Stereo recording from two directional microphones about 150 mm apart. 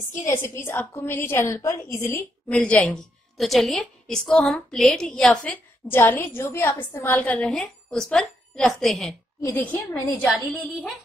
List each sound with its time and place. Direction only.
0.2 s a woman's voice: 15° left (ahead or behind)
9.4 s a woman's voice: 15° left (ahead or behind)
10.2 s a woman's voice: centre (ahead or behind)